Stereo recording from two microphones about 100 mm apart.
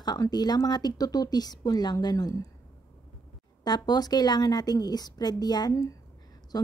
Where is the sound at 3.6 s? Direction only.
45° left (ahead or behind).